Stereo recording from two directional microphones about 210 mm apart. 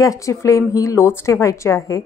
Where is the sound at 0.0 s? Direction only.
15° left (ahead or behind).